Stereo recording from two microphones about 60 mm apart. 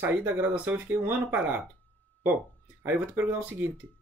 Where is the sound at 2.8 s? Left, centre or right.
Right.